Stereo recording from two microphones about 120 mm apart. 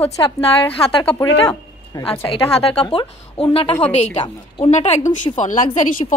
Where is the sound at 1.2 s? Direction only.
25° left (ahead or behind).